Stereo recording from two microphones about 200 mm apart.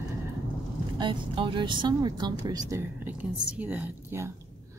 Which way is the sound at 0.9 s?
25° right (ahead or behind).